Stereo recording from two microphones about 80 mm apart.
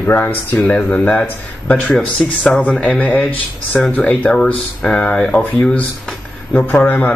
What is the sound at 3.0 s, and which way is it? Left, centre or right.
Speech, left.